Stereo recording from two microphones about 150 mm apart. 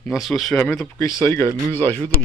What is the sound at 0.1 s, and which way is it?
Speech, centre (ahead or behind).